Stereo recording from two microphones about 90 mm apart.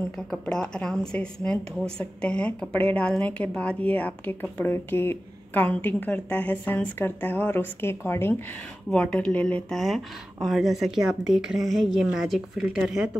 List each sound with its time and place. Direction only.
0.3 s a woman's voice: 10° left (ahead or behind); by 8.4 s 25° left (ahead or behind)
8.9 s a woman's voice: 10° left (ahead or behind)
9.8 s speech: centre (ahead or behind)